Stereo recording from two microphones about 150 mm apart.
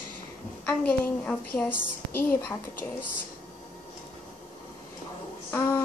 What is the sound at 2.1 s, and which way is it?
Speech, 75° left (ahead or behind).